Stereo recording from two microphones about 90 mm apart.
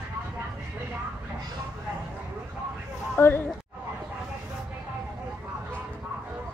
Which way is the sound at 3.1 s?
25° left (ahead or behind).